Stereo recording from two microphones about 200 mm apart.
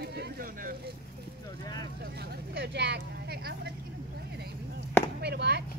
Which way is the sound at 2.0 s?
50° right (ahead or behind).